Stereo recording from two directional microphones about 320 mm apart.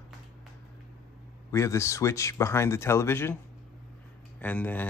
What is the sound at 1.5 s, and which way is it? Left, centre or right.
Speech, centre.